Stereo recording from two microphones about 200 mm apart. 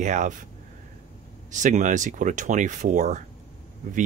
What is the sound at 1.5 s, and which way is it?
Speech, 40° right (ahead or behind).